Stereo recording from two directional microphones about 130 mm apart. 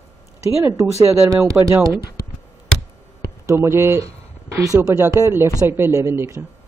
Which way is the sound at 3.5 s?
20° right (ahead or behind).